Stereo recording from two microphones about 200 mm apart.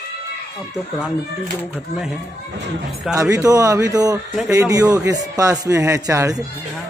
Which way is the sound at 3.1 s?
15° right (ahead or behind).